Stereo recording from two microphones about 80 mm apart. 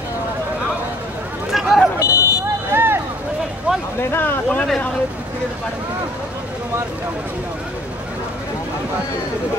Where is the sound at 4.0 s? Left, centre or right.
Left.